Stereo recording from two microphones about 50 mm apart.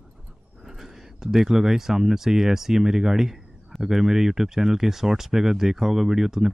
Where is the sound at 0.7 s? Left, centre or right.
Centre.